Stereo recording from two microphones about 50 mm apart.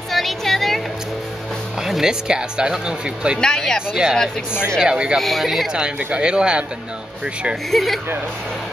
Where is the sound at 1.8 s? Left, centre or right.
Centre.